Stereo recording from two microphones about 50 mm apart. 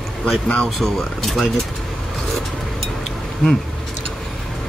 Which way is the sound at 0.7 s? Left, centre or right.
Centre.